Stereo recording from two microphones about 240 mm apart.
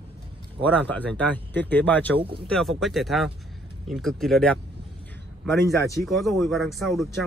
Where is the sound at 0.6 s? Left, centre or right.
Centre.